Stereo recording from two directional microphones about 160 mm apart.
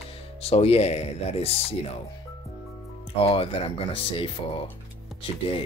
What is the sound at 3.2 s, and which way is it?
Speech, 35° left (ahead or behind).